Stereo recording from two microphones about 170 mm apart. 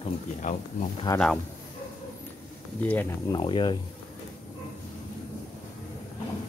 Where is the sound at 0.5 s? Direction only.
50° left (ahead or behind).